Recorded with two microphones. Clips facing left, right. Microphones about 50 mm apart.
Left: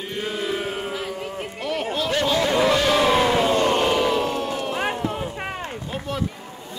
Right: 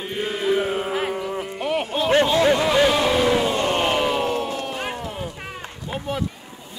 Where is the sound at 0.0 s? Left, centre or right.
Centre.